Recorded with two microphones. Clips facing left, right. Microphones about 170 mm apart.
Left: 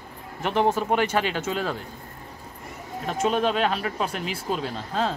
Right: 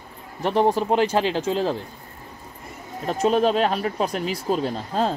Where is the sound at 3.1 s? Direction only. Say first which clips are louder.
Right 4 dB; 40° right (ahead or behind).